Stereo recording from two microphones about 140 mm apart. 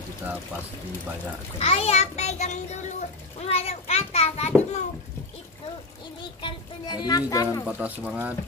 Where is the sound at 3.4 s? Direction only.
45° left (ahead or behind).